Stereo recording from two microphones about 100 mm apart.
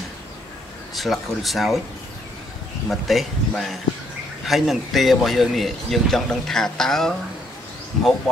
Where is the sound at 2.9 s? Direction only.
Centre (ahead or behind).